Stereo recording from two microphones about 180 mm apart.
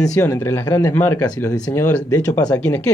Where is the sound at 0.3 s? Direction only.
15° left (ahead or behind).